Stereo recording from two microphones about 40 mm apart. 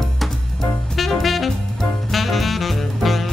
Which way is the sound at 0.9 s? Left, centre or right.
Centre.